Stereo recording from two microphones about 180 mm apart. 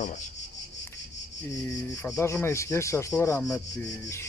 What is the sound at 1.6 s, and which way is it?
Speech, 15° left (ahead or behind).